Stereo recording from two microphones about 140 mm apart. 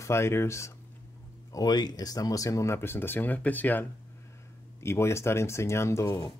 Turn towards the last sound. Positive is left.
turn(degrees=20)  # may be behind; listen again after turning